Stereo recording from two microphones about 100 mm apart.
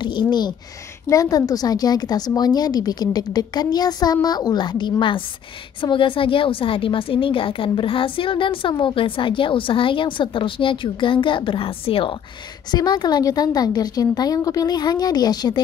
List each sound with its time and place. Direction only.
0.0 s a sound: 45° left (ahead or behind)
1.0 s a woman's voice: 35° left (ahead or behind); by 12.2 s 65° left (ahead or behind)
12.7 s a woman's voice: 45° left (ahead or behind)